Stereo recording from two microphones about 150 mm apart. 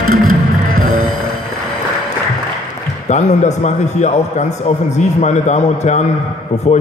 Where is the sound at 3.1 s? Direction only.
50° left (ahead or behind).